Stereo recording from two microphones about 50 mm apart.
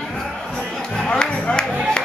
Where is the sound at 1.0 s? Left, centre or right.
Centre.